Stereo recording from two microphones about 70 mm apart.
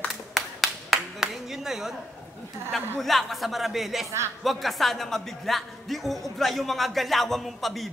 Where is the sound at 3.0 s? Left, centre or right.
Centre.